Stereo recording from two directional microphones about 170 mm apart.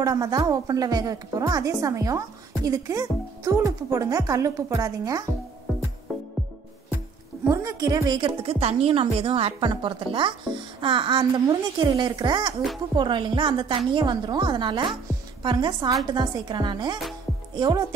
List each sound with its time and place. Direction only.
0.0 s a woman's voice: 20° right (ahead or behind)
7.4 s a woman's voice: 20° right (ahead or behind)